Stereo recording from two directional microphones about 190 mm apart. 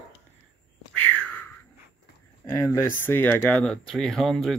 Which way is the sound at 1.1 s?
10° left (ahead or behind).